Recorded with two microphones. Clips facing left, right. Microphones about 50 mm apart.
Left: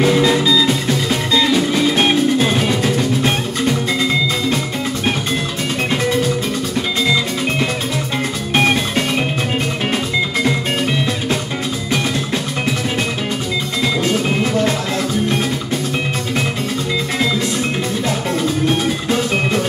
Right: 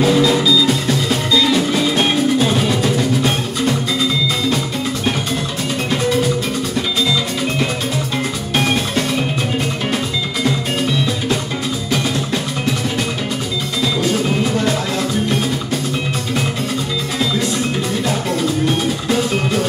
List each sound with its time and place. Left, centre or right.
0.0 s music: left
2.7 s music: centre
8.5 s music: left
14.0 s music: left
18.7 s music: centre